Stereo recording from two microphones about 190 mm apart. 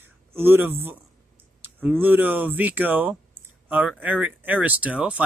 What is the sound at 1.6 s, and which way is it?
A man's voice, 10° right (ahead or behind).